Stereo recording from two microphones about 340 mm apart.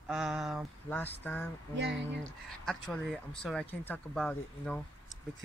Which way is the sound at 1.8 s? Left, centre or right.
Right.